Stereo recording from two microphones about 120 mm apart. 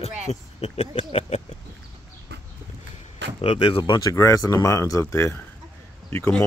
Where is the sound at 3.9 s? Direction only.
25° left (ahead or behind).